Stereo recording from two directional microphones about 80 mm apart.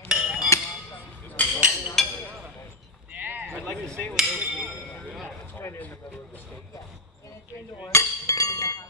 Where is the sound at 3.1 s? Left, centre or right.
Right.